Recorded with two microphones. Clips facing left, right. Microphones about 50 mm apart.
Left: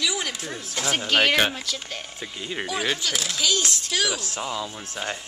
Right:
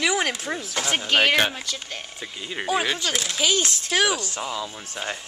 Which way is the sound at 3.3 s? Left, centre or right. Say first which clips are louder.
Right 2 dB; right.